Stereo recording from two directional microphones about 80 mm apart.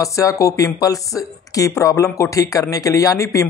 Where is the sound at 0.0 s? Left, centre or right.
Left.